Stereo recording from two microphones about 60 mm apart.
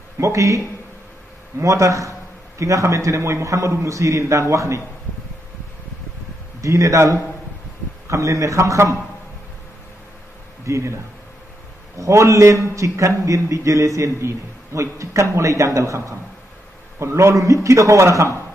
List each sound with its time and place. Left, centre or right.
0.2 s a man's voice: right
1.6 s a man's voice: right
6.6 s a man's voice: right
10.6 s speech: right
12.0 s a man's voice: right